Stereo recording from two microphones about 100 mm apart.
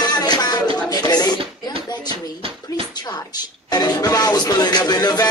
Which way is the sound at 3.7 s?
40° left (ahead or behind).